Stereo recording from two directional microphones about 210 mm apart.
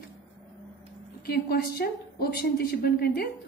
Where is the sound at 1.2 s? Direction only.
50° left (ahead or behind).